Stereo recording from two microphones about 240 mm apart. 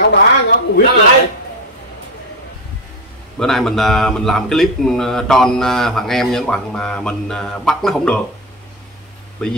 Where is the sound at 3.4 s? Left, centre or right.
Centre.